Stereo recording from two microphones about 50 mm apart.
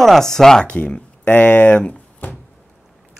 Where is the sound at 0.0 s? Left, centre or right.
Centre.